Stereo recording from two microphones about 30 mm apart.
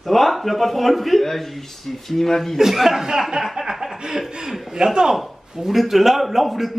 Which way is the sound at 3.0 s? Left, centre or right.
Centre.